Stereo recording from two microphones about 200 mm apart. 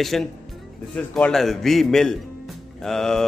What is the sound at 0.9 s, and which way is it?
Speech, 5° left (ahead or behind).